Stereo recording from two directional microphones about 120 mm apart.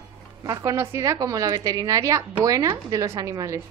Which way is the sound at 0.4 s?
30° right (ahead or behind).